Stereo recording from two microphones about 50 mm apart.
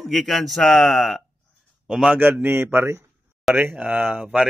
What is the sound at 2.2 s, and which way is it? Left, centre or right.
Speech, right.